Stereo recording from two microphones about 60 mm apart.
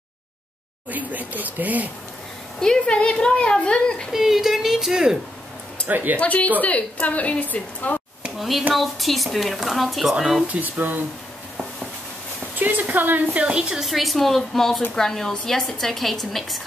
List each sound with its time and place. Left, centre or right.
0.8 s speech: right
2.6 s speech: centre
4.1 s a woman's voice: centre
5.9 s speech: right
6.1 s a woman's voice: left
8.4 s a woman's voice: centre
10.1 s a woman's voice: centre
10.5 s speech: right
12.5 s speech: right; by 13.8 s centre
13.8 s a woman's voice: centre